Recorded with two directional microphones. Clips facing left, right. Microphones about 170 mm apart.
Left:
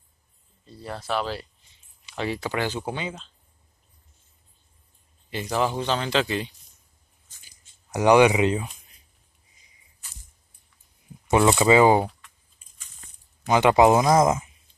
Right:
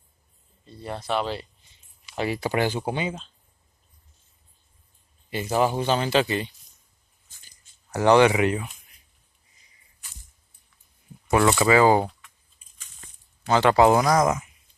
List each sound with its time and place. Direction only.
0.7 s speech: centre (ahead or behind)
5.3 s speech: 5° right (ahead or behind)
7.4 s a sound: 15° left (ahead or behind)
11.2 s speech: 15° left (ahead or behind)
13.5 s speech: 20° left (ahead or behind)